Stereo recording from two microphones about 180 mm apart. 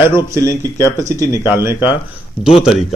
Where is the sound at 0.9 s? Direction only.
15° right (ahead or behind).